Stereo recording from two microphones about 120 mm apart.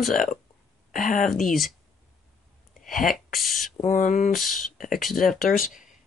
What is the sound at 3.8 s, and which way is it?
Speech, 90° left.